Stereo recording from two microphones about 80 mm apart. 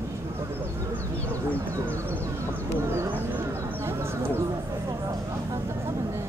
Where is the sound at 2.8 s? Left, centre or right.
Right.